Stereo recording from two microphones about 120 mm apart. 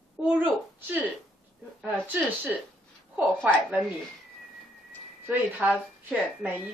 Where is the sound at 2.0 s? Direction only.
15° right (ahead or behind).